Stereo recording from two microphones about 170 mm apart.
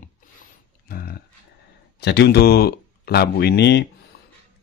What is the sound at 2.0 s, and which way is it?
Speech, 80° left.